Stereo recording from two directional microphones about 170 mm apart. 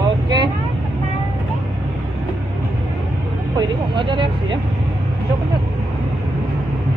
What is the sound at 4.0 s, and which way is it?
Speech, 30° right (ahead or behind).